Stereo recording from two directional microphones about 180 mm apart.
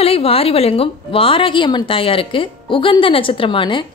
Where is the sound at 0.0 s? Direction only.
35° left (ahead or behind).